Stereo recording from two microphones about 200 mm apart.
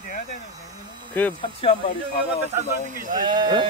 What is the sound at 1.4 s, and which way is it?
Speech, 25° left (ahead or behind).